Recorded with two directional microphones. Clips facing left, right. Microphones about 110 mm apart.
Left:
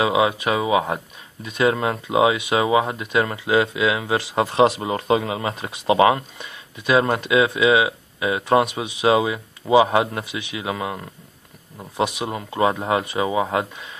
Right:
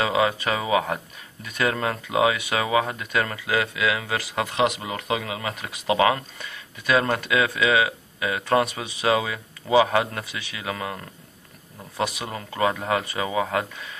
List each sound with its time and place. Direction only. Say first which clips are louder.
0.0 s speech: left 3 dB; 15° left (ahead or behind)